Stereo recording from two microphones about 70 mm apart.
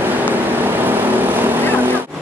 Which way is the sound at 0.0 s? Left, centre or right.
Right.